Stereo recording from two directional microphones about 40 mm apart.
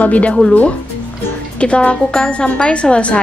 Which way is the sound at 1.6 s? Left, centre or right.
Left.